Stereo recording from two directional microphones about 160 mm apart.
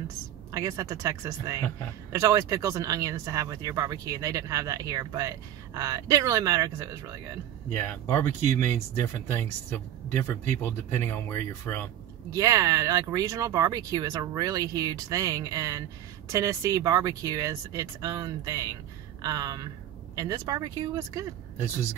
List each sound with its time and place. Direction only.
0.5 s speech: 20° right (ahead or behind)
7.8 s speech: 15° left (ahead or behind)
12.3 s speech: 20° right (ahead or behind)